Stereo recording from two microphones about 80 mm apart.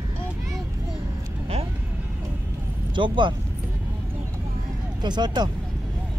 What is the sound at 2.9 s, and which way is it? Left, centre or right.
Speech, right.